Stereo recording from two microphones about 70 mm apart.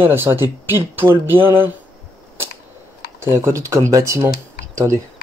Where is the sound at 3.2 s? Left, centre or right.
Right.